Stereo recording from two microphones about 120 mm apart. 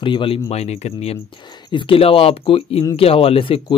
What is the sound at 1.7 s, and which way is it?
Speech, 45° left (ahead or behind).